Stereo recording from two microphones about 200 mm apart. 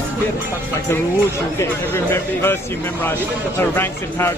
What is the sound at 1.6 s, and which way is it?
Speech, 10° left (ahead or behind).